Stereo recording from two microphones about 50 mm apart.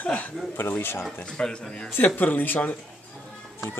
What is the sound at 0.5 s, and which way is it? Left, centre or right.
Speech, left.